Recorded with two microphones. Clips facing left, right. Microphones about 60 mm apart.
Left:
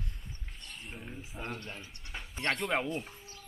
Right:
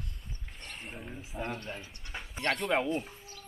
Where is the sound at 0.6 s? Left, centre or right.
Right.